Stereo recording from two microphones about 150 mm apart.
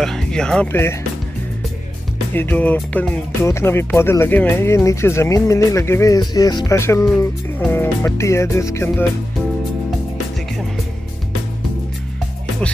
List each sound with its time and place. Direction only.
0.0 s speech: 5° left (ahead or behind)
2.3 s speech: 10° left (ahead or behind)